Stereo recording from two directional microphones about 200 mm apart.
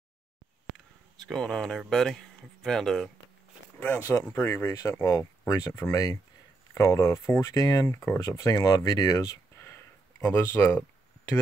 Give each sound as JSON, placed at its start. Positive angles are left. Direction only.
{"t": 0.7, "sound": "speech", "side_deg": 0}